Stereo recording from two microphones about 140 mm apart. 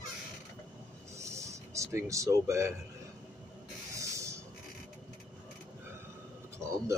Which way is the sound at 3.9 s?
20° right (ahead or behind).